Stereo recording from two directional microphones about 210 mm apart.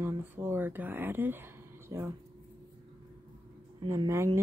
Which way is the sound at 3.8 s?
20° right (ahead or behind).